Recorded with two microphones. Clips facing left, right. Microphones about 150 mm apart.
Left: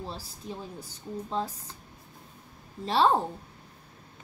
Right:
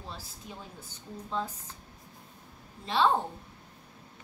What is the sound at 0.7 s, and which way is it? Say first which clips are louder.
Speech: left 6 dB; 35° left (ahead or behind).